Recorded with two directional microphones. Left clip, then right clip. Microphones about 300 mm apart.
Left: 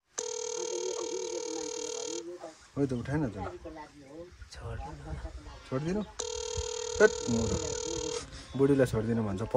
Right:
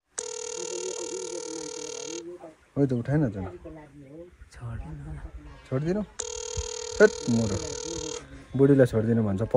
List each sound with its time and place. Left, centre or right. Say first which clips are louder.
0.2 s dial tone: right 1 dB; right
2.7 s a man's voice: right 6 dB; right
6.1 s speech: right 1 dB; right
8.5 s a man's voice: right 6 dB; right